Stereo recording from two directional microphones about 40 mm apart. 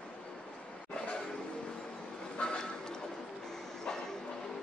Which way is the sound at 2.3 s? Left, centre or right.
Centre.